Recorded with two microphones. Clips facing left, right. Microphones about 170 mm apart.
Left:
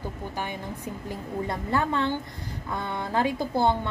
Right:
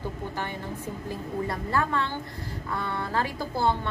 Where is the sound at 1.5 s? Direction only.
20° left (ahead or behind).